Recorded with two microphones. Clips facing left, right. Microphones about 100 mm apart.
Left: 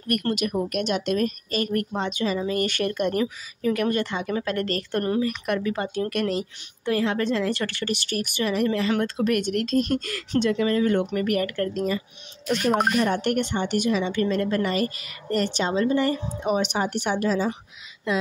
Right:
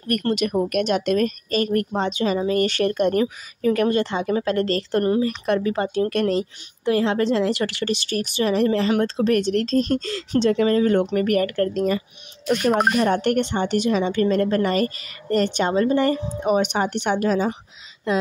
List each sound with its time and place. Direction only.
0.1 s a woman's voice: 35° right (ahead or behind)
3.9 s speech: 25° right (ahead or behind)
6.8 s speech: 25° right (ahead or behind)
8.5 s speech: 40° right (ahead or behind)
9.0 s speech: 25° right (ahead or behind)
9.5 s speech: 35° right (ahead or behind)
10.5 s a woman's voice: 40° right (ahead or behind)